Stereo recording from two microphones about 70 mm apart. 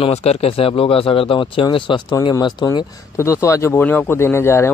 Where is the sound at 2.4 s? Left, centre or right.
Left.